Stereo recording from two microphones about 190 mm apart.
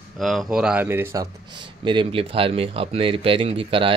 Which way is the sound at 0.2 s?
Centre (ahead or behind).